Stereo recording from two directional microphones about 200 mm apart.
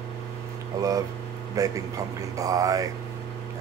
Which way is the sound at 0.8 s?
15° right (ahead or behind).